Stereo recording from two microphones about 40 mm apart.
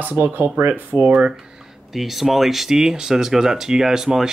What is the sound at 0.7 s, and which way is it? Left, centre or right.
Speech, right.